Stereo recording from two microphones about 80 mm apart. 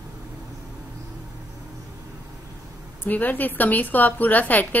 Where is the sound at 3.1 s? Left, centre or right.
Left.